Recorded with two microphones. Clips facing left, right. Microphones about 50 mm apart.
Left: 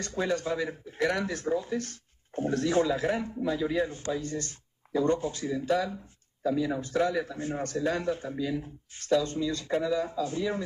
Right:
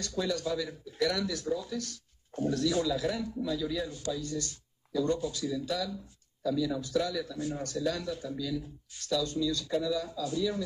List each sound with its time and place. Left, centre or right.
0.0 s speech: left